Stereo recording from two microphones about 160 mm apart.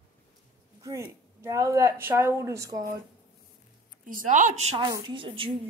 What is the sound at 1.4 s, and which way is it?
A woman's voice, 20° right (ahead or behind).